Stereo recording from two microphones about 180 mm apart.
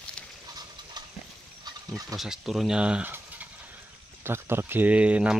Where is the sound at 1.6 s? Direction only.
20° right (ahead or behind).